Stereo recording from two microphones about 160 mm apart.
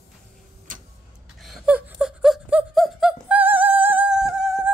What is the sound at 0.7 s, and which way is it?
Tick-tock, 55° right (ahead or behind).